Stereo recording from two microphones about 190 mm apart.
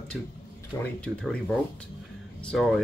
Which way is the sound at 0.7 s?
15° left (ahead or behind).